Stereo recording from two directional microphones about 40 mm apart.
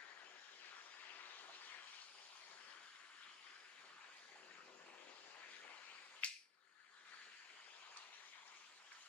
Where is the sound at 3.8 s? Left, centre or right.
Left.